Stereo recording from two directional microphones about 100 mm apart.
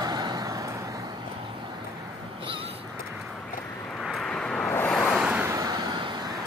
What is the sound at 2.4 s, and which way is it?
Crow, 65° right (ahead or behind).